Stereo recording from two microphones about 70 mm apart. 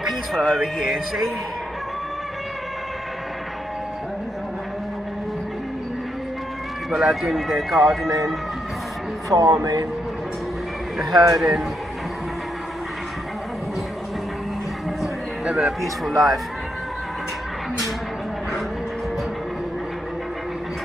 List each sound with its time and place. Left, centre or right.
0.4 s speech: centre
6.9 s speech: centre
9.3 s speech: right
11.3 s a man's voice: centre
15.4 s a sound: centre
15.8 s speech: centre